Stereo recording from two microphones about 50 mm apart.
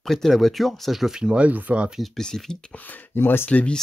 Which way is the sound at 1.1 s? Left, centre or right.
Centre.